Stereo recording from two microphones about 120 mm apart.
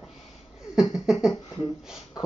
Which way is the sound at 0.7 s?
5° right (ahead or behind).